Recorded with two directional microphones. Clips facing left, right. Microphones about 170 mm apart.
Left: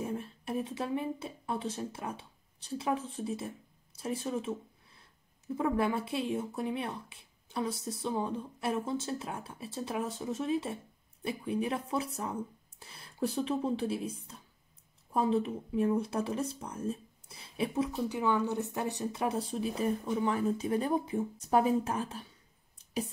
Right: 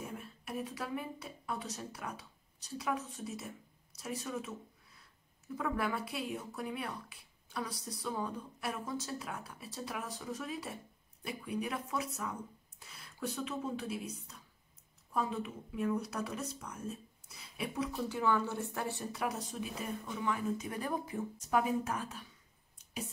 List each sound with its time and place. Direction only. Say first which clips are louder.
0.0 s a woman's voice: left 8 dB; 30° left (ahead or behind)